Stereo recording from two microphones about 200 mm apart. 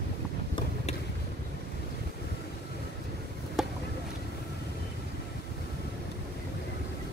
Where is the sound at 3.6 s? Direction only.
Centre (ahead or behind).